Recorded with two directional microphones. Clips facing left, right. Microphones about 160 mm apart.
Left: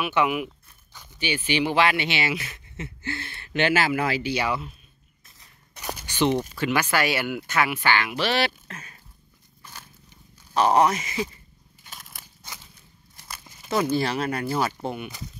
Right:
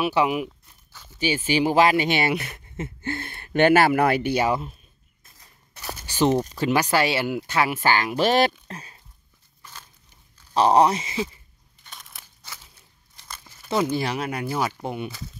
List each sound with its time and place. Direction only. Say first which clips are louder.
0.0 s speech: right 2 dB; 35° right (ahead or behind)
5.8 s a sound: left 2 dB; 15° left (ahead or behind)
6.0 s speech: right 2 dB; 40° right (ahead or behind)
9.6 s a sound: even; 10° left (ahead or behind)
10.5 s speech: right 2 dB; 30° right (ahead or behind)
11.8 s biting: even; 5° left (ahead or behind)
13.2 s walk: even; 10° left (ahead or behind)
13.9 s speech: left 1 dB; 15° right (ahead or behind)